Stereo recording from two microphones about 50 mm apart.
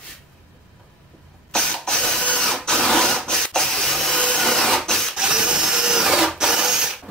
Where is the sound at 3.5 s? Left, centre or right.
Centre.